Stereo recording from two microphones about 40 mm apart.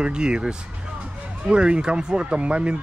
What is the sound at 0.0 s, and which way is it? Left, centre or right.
Speech, right.